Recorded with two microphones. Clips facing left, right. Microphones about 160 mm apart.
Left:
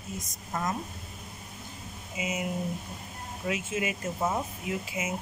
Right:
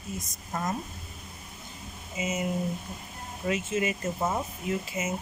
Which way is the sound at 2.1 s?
10° left (ahead or behind).